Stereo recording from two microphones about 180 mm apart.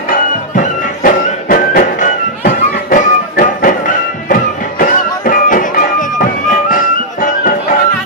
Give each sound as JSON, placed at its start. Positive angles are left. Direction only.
{"t": 0.1, "sound": "music", "side_deg": 50}